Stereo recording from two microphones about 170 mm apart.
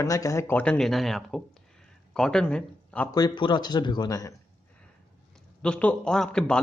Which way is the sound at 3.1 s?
25° left (ahead or behind).